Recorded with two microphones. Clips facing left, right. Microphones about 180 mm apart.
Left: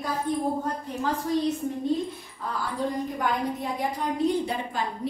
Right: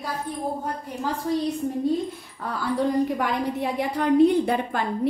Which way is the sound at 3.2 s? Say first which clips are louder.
Right 2 dB; 70° right (ahead or behind).